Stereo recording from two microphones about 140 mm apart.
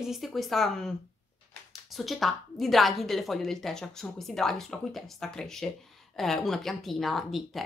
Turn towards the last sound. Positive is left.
turn(degrees=0)  # may be behind; listen again after turning